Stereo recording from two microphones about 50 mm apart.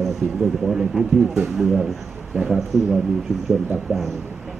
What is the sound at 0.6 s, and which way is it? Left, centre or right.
A man's voice, centre.